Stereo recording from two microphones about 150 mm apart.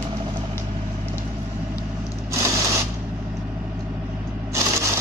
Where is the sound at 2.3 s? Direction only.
20° right (ahead or behind).